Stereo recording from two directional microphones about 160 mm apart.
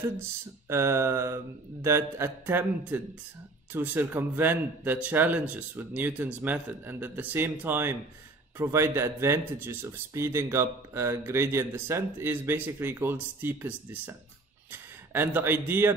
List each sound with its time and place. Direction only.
0.0 s speech: 15° right (ahead or behind)